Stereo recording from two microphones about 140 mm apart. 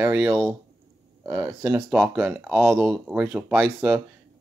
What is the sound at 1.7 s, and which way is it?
Speech, 10° right (ahead or behind).